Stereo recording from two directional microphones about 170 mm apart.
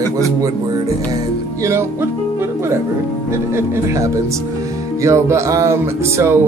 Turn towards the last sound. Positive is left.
turn(degrees=-15)  # may be behind; listen again after turning